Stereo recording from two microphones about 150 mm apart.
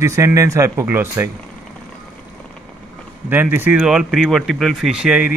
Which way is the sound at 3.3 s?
15° right (ahead or behind).